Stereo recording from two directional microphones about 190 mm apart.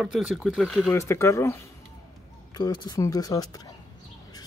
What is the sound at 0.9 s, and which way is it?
Speech, 15° left (ahead or behind).